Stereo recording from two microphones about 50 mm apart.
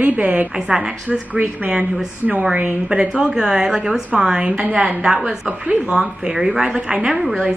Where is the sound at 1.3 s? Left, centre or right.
Right.